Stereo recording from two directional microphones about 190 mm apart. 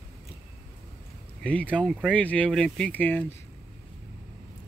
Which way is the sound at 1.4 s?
5° left (ahead or behind).